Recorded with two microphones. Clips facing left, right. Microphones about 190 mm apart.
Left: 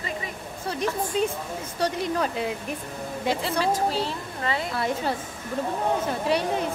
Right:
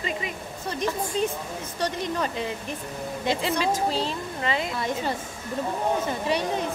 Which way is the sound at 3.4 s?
20° right (ahead or behind).